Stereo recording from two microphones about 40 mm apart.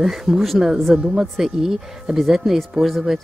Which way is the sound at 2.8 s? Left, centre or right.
Centre.